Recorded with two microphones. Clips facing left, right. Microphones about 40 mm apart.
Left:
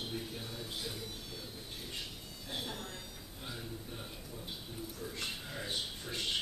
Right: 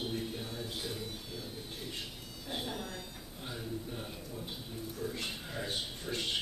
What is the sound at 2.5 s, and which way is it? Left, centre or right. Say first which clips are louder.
Speech: right 3 dB; centre.